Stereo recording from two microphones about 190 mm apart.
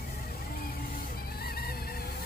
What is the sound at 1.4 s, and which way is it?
Music, 55° left (ahead or behind).